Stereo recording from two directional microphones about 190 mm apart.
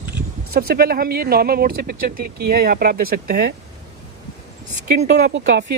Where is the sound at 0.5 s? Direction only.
50° right (ahead or behind).